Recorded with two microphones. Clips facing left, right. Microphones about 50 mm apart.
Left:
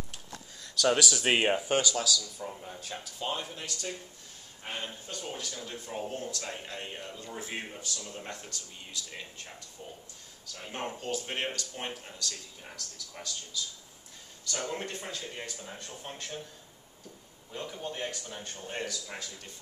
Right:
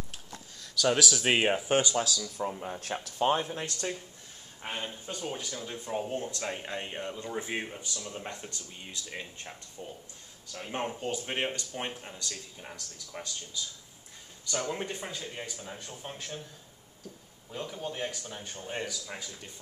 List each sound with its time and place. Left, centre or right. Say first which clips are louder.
0.7 s speech: even; centre
1.7 s speech: right 1 dB; right
4.6 s speech: right 2 dB; centre
11.0 s speech: right 2 dB; centre
14.6 s speech: right 1 dB; centre
15.3 s speech: right 1 dB; centre
17.5 s speech: right 1 dB; centre